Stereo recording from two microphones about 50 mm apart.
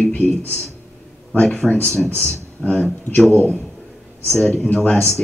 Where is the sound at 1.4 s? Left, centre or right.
Centre.